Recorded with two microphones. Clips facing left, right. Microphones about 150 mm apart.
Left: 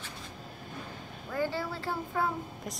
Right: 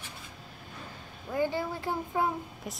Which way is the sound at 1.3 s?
15° right (ahead or behind).